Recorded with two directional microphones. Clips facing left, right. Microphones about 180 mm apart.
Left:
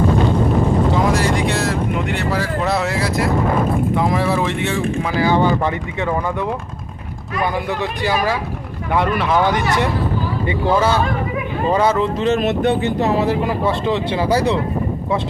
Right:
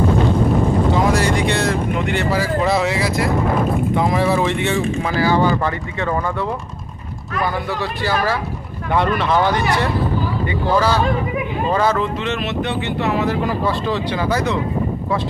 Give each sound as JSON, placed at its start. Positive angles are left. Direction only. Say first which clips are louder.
{"t": 1.1, "sound": "speech", "louder": "even", "side_deg": 0}
{"t": 5.1, "sound": "speech", "louder": "left 1 dB", "side_deg": 20}
{"t": 10.4, "sound": "speech", "louder": "left 2 dB", "side_deg": 25}
{"t": 11.7, "sound": "speech", "louder": "left 2 dB", "side_deg": 15}
{"t": 12.0, "sound": "speech", "louder": "left 5 dB", "side_deg": 35}